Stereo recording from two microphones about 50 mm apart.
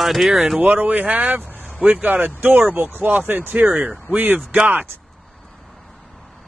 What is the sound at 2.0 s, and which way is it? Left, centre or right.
Speech, right.